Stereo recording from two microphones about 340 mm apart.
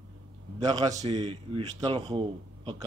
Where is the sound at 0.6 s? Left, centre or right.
Centre.